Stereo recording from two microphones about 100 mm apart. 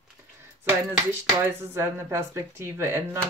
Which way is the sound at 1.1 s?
20° right (ahead or behind).